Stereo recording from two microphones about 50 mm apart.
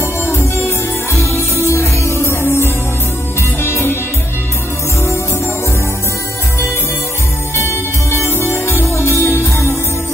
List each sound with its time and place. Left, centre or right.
1.7 s music: left
8.1 s music: left
8.8 s music: left
9.2 s music: left